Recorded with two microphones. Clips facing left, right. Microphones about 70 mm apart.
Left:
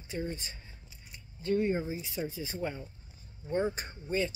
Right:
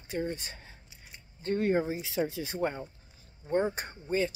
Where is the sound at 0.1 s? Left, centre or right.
Right.